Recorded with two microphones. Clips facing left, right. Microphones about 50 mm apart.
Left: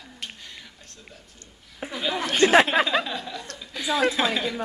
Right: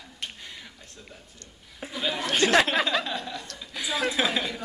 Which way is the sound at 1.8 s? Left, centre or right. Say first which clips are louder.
Left 5 dB; left.